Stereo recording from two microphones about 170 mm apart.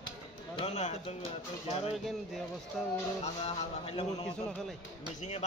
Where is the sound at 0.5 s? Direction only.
40° left (ahead or behind).